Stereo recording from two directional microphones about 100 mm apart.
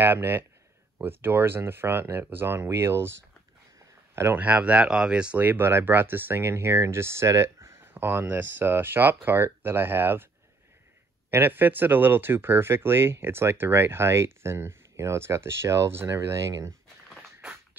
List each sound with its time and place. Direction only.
0.0 s speech: 20° right (ahead or behind)
4.1 s a sound: 25° right (ahead or behind)
4.4 s speech: 15° right (ahead or behind)
11.2 s speech: 20° right (ahead or behind)